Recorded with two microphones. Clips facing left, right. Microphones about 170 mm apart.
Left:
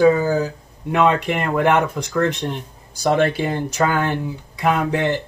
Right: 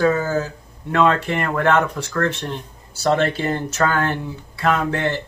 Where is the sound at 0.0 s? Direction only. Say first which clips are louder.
Left 4 dB; 15° left (ahead or behind).